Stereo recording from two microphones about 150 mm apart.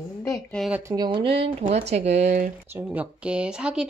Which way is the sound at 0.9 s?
30° right (ahead or behind).